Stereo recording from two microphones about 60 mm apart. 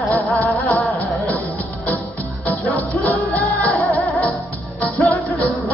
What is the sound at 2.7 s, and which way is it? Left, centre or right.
Music, left.